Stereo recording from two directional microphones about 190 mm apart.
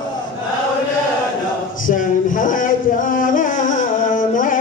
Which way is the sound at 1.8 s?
45° left (ahead or behind).